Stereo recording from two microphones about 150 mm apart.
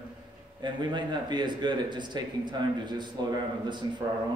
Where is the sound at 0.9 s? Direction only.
30° right (ahead or behind).